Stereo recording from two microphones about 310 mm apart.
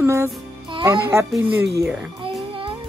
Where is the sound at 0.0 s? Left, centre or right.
Centre.